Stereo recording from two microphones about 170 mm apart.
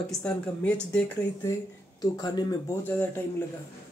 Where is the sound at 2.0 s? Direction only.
20° left (ahead or behind).